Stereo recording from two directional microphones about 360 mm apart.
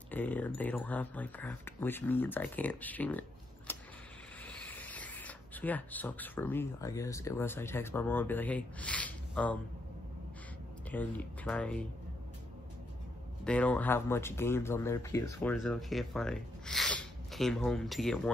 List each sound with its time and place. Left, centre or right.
0.1 s speech: centre
10.9 s speech: centre
13.4 s speech: centre